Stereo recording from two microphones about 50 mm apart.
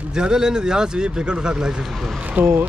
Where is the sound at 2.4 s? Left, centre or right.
Right.